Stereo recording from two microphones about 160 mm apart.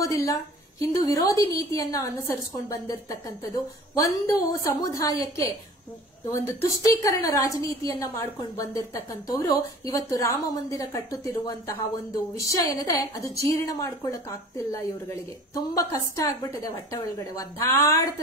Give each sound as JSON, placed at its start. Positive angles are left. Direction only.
{"t": 0.0, "sound": "a woman's voice", "side_deg": 20}